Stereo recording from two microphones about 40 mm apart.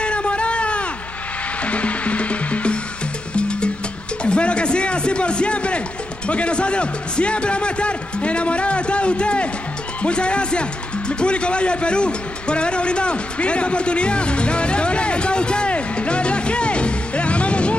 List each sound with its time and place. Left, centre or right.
0.0 s a sound: left
1.6 s music: left
6.2 s a man's voice: left